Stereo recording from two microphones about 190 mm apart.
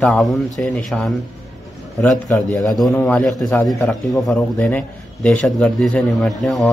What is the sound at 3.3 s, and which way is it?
Speech, 20° left (ahead or behind).